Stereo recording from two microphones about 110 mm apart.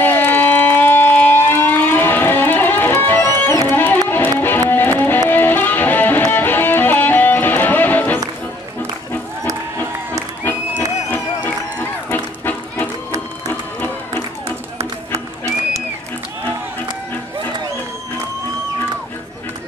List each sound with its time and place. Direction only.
0.0 s a sound: 15° left (ahead or behind)
3.3 s music: 20° left (ahead or behind)
12.1 s music: 20° left (ahead or behind)